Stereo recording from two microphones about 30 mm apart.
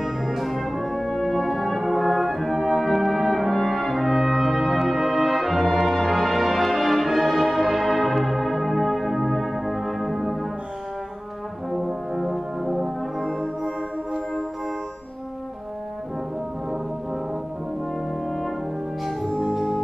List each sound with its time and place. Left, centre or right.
0.0 s brass instrument: centre
11.7 s brass instrument: centre
13.2 s music: centre
19.5 s music: centre